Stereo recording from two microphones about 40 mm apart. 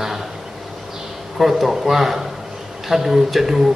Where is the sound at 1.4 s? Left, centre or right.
Centre.